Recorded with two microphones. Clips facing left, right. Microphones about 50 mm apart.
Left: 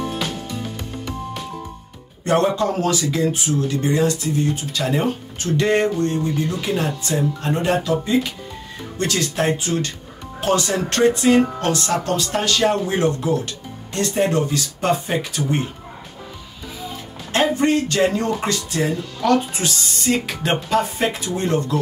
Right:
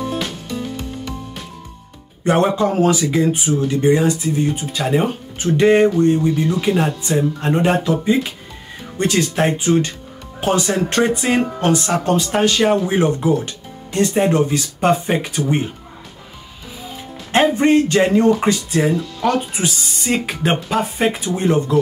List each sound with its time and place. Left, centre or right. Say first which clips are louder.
2.2 s speech: right 2 dB; centre
17.3 s speech: right 4 dB; right